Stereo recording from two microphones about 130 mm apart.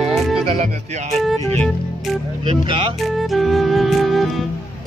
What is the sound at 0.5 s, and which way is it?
Speech, 60° right (ahead or behind).